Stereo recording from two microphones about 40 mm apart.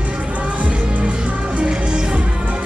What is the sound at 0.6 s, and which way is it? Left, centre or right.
Music, right.